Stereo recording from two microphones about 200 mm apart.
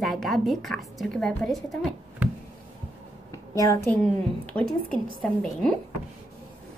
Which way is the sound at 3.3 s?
15° left (ahead or behind).